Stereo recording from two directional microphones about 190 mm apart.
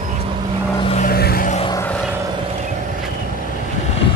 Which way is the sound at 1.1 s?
55° left (ahead or behind).